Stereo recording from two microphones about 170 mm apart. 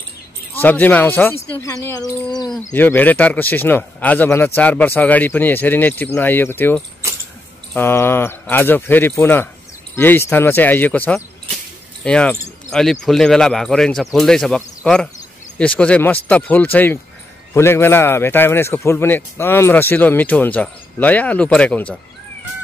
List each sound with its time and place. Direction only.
0.6 s speech: 10° left (ahead or behind)
2.7 s speech: 10° left (ahead or behind)